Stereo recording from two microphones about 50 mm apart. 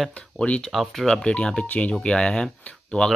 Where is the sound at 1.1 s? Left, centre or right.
Centre.